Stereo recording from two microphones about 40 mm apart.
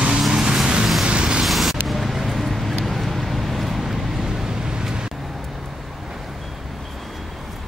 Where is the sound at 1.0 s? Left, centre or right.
Right.